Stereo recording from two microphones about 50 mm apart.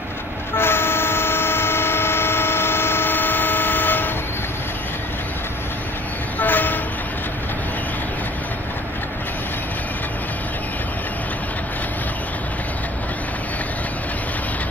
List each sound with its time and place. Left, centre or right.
0.6 s vehicle: left
6.4 s train: left